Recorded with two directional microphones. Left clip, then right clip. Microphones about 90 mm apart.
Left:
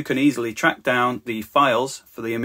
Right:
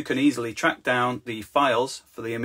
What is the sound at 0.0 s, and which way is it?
Speech, 40° left (ahead or behind).